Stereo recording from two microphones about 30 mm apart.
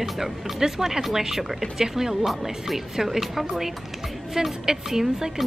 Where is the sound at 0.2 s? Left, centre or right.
Centre.